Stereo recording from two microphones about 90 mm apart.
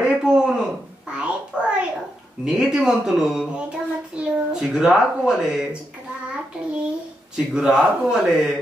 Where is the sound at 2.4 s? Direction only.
10° right (ahead or behind).